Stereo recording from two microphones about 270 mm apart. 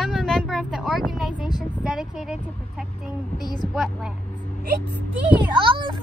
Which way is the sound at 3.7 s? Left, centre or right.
Centre.